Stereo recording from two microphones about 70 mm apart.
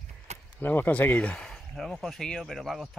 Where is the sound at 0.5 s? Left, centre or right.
Left.